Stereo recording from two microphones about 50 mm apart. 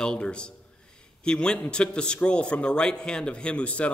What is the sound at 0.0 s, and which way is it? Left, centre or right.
A man's voice, centre.